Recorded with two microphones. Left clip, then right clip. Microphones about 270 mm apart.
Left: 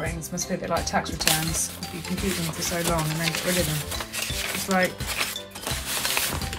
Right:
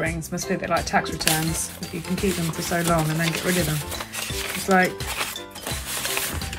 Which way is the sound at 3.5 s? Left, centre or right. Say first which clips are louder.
Right 1 dB; centre.